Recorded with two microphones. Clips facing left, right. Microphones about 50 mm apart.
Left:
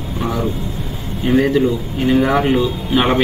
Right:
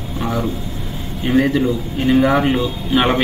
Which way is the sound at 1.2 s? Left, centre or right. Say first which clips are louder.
Left 1 dB; centre.